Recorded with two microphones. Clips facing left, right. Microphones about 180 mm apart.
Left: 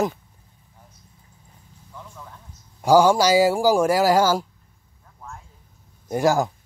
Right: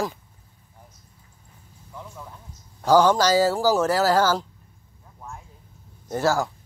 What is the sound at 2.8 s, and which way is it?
Speech, 10° left (ahead or behind).